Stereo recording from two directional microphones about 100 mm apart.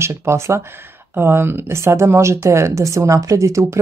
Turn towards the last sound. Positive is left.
turn(degrees=-30)  # may be behind; listen again after turning